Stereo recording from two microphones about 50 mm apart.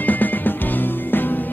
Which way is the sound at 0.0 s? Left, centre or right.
Left.